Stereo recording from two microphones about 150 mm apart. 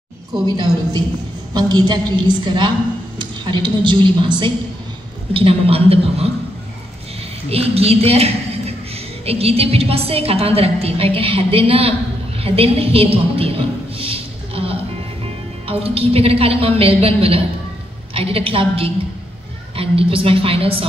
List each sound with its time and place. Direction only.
0.5 s a woman's voice: 25° right (ahead or behind)
7.4 s a woman's voice: 40° right (ahead or behind)